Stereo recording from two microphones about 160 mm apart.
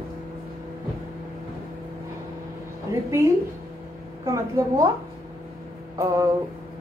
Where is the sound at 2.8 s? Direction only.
20° right (ahead or behind).